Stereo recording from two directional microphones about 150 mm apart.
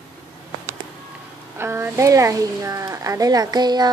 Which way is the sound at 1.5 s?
15° right (ahead or behind).